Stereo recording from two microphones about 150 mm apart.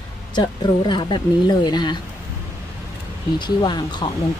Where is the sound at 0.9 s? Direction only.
30° left (ahead or behind).